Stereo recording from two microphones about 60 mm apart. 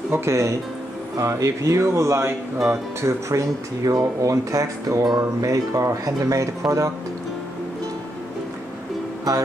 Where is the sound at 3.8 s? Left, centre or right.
Right.